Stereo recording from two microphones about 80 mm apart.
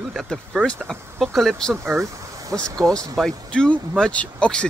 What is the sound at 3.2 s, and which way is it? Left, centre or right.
Speech, centre.